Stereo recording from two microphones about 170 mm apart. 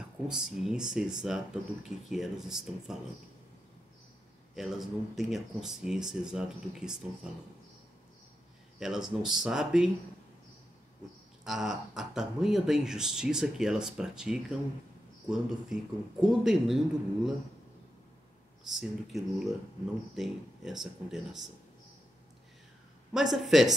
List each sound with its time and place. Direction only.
0.3 s speech: 5° right (ahead or behind)
4.6 s speech: centre (ahead or behind)
8.7 s speech: 5° right (ahead or behind)
11.4 s speech: centre (ahead or behind)
18.7 s speech: centre (ahead or behind)
23.1 s speech: centre (ahead or behind)